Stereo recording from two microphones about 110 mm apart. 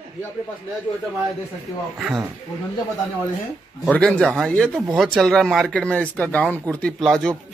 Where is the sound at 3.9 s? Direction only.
5° left (ahead or behind).